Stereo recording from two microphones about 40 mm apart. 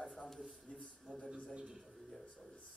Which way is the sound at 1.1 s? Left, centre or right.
Right.